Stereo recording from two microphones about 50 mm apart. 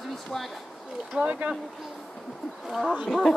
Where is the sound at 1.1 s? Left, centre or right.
Right.